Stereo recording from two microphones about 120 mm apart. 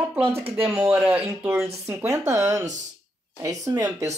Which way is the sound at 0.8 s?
15° right (ahead or behind).